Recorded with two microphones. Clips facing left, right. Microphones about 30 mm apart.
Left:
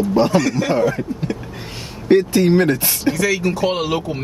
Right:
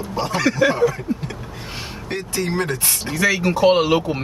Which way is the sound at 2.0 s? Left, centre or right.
Centre.